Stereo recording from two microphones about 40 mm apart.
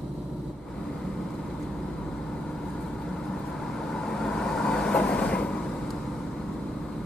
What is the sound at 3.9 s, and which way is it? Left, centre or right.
Train, centre.